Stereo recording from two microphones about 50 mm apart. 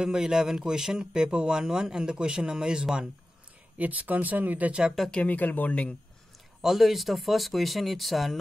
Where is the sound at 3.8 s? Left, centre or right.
Right.